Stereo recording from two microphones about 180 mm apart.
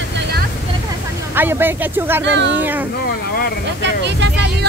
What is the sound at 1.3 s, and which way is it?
Speech, 10° right (ahead or behind).